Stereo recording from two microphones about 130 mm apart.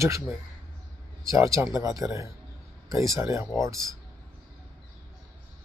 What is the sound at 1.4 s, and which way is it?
Speech, 25° right (ahead or behind).